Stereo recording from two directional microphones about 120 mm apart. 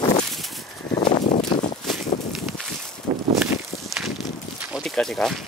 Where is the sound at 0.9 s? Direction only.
40° left (ahead or behind).